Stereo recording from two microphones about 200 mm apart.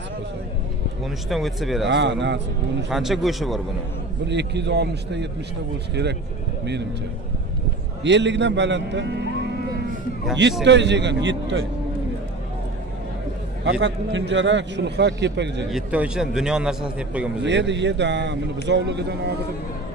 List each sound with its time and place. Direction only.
1.3 s a man's voice: centre (ahead or behind)
1.9 s a man's voice: 60° right (ahead or behind)
2.9 s a man's voice: centre (ahead or behind)
4.3 s a man's voice: 60° right (ahead or behind)
8.0 s a man's voice: 60° right (ahead or behind)
10.6 s a man's voice: 60° right (ahead or behind)
13.7 s a man's voice: 60° right (ahead or behind)
15.7 s a man's voice: 5° right (ahead or behind)
17.4 s a man's voice: 60° right (ahead or behind)